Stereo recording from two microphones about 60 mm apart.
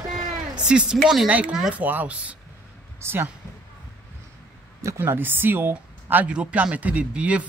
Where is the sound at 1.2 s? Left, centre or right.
Right.